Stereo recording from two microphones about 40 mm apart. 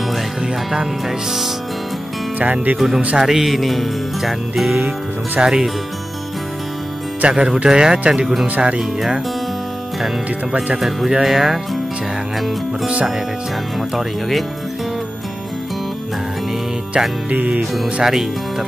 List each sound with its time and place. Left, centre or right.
1.0 s music: centre
2.3 s speech: right
3.2 s music: centre
5.4 s speech: centre
7.2 s speech: right
7.4 s speech: centre
10.8 s speech: centre
11.2 s music: centre
12.8 s speech: right
13.7 s music: centre
17.3 s speech: right